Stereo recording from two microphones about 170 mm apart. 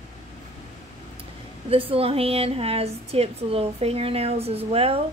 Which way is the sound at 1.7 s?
35° right (ahead or behind).